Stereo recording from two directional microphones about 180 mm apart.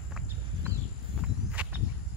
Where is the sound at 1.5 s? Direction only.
10° right (ahead or behind).